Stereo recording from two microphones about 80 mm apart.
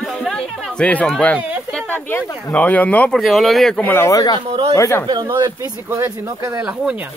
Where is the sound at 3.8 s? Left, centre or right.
Left.